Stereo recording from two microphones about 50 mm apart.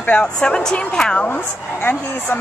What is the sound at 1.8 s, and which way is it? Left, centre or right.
Speech, left.